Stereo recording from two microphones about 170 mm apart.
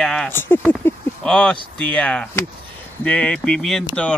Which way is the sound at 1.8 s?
5° left (ahead or behind).